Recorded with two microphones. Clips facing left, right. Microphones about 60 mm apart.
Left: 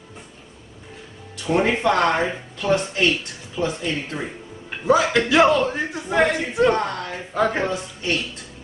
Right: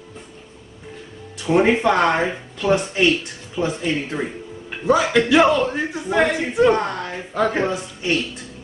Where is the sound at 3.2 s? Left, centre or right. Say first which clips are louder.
Right 1 dB; centre.